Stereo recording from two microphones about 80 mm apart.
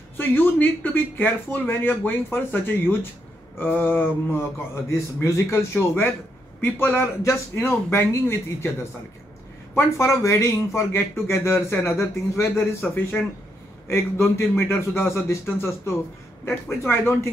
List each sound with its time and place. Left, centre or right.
0.2 s speech: left
5.2 s speech: left
9.8 s speech: left